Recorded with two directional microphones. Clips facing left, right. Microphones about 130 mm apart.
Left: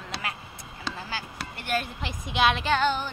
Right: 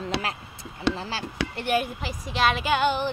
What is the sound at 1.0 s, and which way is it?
Speech, 25° right (ahead or behind).